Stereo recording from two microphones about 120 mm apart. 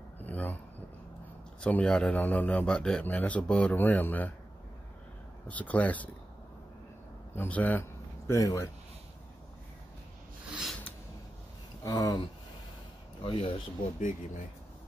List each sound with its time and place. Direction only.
0.2 s a sound: 15° left (ahead or behind)
1.6 s a man's voice: 10° left (ahead or behind)
5.5 s a man's voice: 10° left (ahead or behind)
7.3 s a man's voice: 15° left (ahead or behind)
8.3 s speech: 25° left (ahead or behind)
10.5 s a sound: 5° right (ahead or behind)
11.8 s speech: 30° left (ahead or behind)
13.2 s speech: 45° left (ahead or behind)